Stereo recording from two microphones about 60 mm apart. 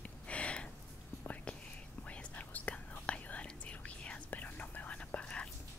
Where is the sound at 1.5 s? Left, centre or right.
Centre.